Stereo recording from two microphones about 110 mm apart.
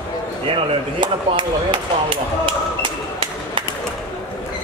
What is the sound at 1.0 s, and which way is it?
Speech, 50° right (ahead or behind).